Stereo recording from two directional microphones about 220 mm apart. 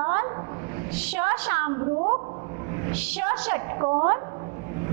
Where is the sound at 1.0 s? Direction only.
10° right (ahead or behind).